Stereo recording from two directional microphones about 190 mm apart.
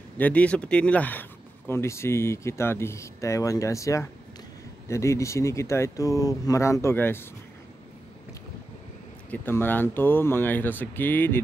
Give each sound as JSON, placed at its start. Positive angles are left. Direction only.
{"t": 0.2, "sound": "speech", "side_deg": 5}
{"t": 9.3, "sound": "speech", "side_deg": 10}